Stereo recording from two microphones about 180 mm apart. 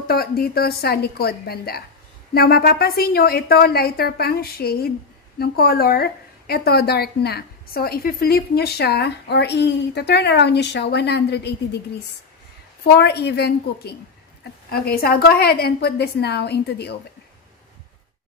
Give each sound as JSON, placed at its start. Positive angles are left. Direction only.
{"t": 0.0, "sound": "a woman's voice", "side_deg": 55}
{"t": 12.8, "sound": "a woman's voice", "side_deg": 65}